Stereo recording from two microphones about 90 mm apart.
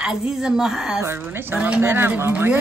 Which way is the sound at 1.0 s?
25° right (ahead or behind).